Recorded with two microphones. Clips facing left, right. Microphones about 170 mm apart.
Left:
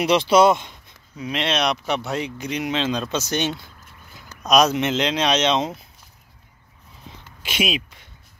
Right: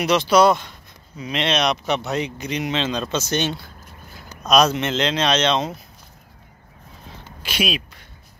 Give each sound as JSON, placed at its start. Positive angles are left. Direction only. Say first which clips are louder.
{"t": 0.0, "sound": "speech", "louder": "even", "side_deg": 25}
{"t": 1.1, "sound": "speech", "louder": "right 1 dB", "side_deg": 5}
{"t": 7.4, "sound": "speech", "louder": "even", "side_deg": 20}